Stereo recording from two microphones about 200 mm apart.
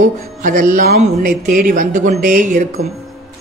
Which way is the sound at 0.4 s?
40° right (ahead or behind).